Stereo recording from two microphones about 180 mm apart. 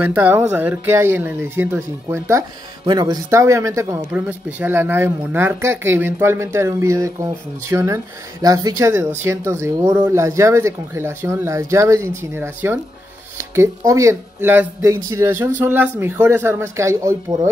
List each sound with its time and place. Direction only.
0.0 s speech: 10° right (ahead or behind)